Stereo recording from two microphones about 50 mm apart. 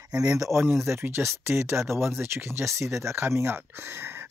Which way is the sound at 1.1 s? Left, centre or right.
Right.